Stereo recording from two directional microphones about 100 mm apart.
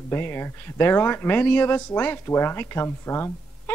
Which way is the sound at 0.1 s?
25° left (ahead or behind).